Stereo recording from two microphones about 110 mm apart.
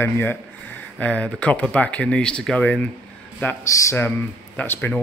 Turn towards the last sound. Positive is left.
turn(degrees=15)  # may be behind; listen again after turning